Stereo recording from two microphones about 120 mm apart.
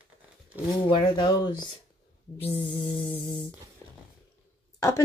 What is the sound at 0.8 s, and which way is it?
Speech, 40° left (ahead or behind).